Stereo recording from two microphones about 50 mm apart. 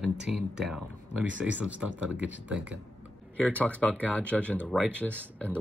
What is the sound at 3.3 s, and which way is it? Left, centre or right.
Speech, left.